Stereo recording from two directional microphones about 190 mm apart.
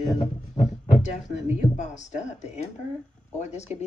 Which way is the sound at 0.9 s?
40° left (ahead or behind).